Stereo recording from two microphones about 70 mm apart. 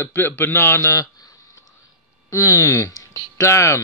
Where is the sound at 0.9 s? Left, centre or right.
Left.